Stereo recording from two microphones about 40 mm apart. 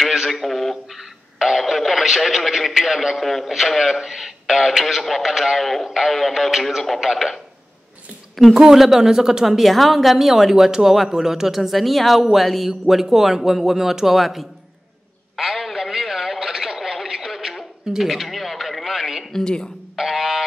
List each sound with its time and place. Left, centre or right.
0.0 s a sound: centre
0.9 s radio: centre
3.2 s speech: centre
9.6 s speech: centre
15.3 s a sound: centre
19.3 s a woman's voice: centre
20.0 s music: centre